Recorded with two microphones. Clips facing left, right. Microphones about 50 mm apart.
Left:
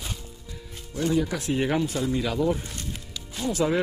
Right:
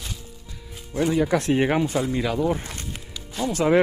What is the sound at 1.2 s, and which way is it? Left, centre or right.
Speech, right.